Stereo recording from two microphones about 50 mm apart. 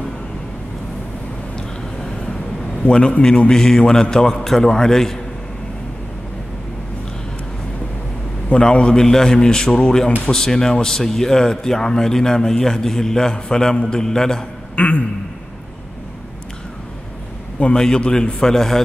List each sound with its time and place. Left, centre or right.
2.8 s a man's voice: centre
8.5 s a man's voice: centre
14.8 s a sound: left
17.7 s a man's voice: centre